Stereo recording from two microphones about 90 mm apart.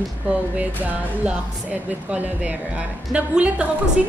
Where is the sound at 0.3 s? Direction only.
15° right (ahead or behind).